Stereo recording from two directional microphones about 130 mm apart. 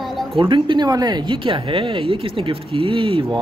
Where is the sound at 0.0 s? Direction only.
Centre (ahead or behind).